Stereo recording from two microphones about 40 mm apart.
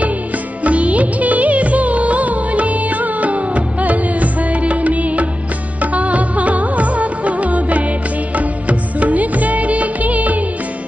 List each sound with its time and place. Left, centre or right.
0.7 s music of bollywood: right
8.4 s music: right